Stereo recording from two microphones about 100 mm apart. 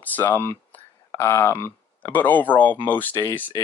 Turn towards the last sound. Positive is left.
turn(degrees=20)  # may be behind; listen again after turning